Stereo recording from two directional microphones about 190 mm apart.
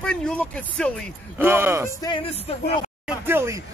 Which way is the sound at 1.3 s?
10° right (ahead or behind).